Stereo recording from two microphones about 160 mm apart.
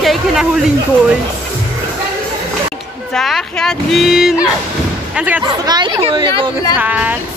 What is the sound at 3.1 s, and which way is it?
A woman's voice, 5° left (ahead or behind).